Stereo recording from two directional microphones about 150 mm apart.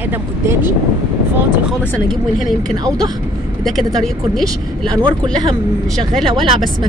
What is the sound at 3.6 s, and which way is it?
A woman's voice, centre (ahead or behind).